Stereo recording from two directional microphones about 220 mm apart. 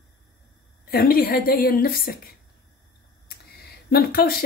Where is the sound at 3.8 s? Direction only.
45° left (ahead or behind).